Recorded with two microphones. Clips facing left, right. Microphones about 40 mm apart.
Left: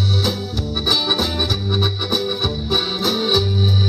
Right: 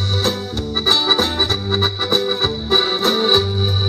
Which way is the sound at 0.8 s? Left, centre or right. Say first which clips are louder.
Right 3 dB; right.